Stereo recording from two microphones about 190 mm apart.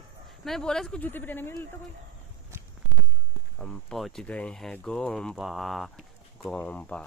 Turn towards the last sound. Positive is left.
turn(degrees=5)  # may be behind; listen again after turning